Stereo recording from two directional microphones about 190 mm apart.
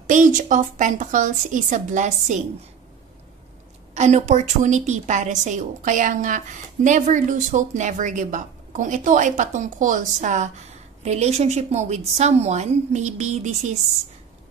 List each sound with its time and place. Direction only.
0.1 s a woman's voice: 40° right (ahead or behind)
3.9 s a woman's voice: 35° right (ahead or behind)